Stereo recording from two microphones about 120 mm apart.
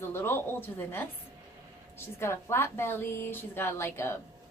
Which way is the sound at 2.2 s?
20° left (ahead or behind).